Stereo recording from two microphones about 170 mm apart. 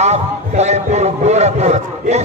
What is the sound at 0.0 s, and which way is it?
A man's voice, 40° right (ahead or behind).